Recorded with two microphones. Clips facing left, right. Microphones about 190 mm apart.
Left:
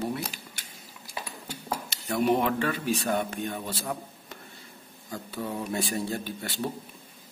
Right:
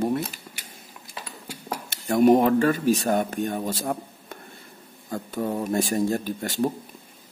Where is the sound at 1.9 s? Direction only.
45° right (ahead or behind).